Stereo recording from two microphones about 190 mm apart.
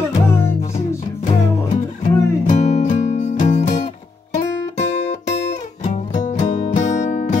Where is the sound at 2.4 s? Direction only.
40° left (ahead or behind).